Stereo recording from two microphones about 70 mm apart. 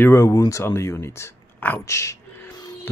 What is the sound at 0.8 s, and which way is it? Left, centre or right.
Speech, left.